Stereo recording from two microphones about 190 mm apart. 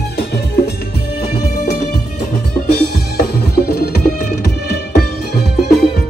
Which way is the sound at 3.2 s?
55° left (ahead or behind).